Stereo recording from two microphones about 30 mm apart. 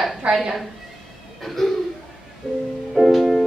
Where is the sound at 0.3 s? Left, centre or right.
Right.